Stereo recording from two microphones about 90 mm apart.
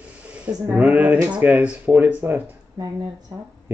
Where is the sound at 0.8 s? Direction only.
15° right (ahead or behind).